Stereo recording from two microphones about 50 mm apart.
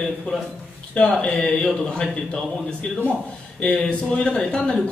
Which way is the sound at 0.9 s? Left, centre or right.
Left.